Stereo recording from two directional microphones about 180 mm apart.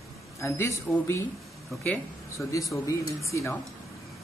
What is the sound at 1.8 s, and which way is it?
Speech, 5° left (ahead or behind).